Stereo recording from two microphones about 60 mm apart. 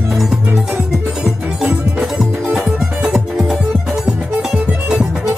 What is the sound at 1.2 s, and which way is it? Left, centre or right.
Music, centre.